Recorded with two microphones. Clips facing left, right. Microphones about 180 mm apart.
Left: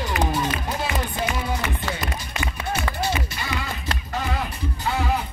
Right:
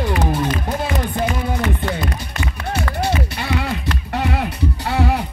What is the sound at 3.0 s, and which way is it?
Music, 65° right (ahead or behind).